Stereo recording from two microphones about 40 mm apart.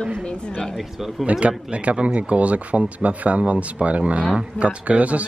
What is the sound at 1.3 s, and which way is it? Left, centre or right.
A man's voice, right.